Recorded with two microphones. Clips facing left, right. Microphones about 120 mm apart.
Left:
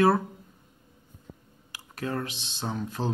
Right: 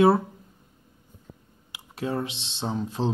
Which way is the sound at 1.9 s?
20° right (ahead or behind).